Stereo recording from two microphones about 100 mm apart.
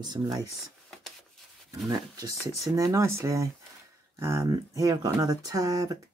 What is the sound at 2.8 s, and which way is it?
Speech, 30° right (ahead or behind).